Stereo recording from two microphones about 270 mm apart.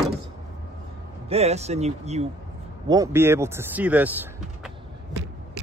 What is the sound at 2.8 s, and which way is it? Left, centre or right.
Speech, centre.